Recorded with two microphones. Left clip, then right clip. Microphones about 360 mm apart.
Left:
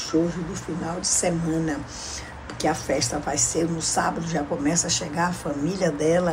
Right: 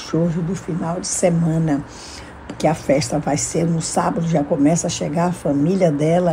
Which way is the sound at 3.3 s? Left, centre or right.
Centre.